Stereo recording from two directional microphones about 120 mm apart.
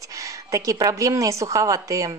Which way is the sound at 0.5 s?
30° right (ahead or behind).